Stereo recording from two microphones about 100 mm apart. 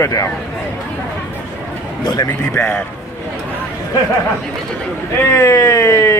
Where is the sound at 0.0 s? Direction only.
30° left (ahead or behind).